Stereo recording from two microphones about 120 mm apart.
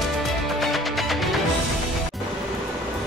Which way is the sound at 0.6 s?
Centre (ahead or behind).